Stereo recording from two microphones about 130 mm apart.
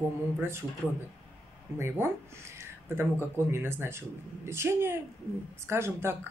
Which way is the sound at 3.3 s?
20° right (ahead or behind).